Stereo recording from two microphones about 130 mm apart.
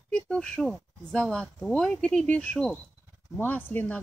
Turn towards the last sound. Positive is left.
turn(degrees=15)  # may be behind; listen again after turning